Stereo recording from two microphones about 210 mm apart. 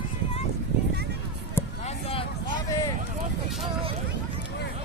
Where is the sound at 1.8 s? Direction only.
25° left (ahead or behind).